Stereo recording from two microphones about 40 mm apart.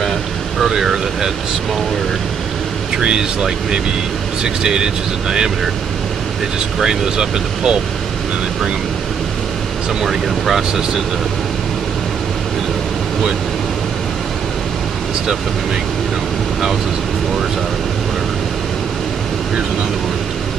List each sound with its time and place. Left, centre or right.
0.7 s speech: centre
3.0 s speech: centre
6.8 s speech: centre
10.0 s speech: centre